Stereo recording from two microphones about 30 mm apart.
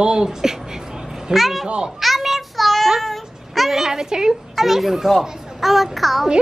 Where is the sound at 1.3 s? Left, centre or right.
Centre.